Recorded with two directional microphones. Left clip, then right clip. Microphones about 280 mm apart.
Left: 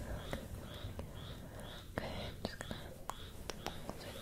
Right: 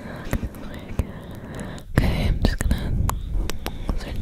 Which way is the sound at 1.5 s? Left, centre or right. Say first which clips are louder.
Right 18 dB; right.